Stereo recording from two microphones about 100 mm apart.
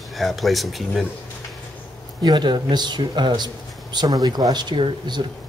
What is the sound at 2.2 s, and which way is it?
Speech, 50° right (ahead or behind).